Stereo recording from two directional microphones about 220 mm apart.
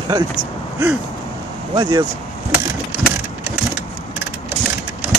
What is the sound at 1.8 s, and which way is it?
Speech, 15° right (ahead or behind).